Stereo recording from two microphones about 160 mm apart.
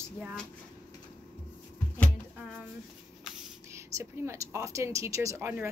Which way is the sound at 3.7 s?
20° right (ahead or behind).